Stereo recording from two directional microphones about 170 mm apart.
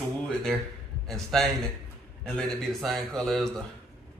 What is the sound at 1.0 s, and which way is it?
A woman's voice, centre (ahead or behind).